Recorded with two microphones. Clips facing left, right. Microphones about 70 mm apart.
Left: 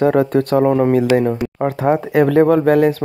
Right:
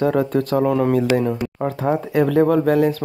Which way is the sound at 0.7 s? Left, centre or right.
Left.